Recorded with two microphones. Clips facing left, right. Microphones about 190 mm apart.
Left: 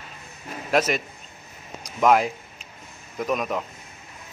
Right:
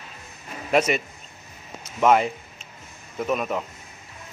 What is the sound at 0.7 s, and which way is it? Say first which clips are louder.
A man's voice: right 1 dB; 10° right (ahead or behind).